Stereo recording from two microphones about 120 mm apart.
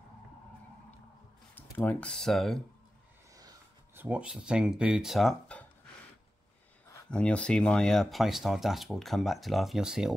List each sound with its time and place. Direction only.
1.5 s speech: 15° left (ahead or behind)
3.9 s speech: 15° right (ahead or behind)
5.5 s a sound: 10° left (ahead or behind)
7.1 s speech: 10° left (ahead or behind)